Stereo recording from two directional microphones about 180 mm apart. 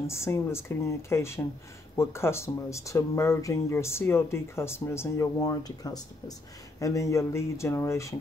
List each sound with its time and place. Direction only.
0.0 s speech: 15° left (ahead or behind)